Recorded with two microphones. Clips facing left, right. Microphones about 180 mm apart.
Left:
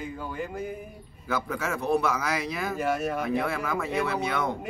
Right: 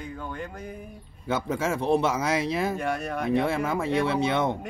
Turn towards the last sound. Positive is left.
turn(degrees=-25)  # may be behind; listen again after turning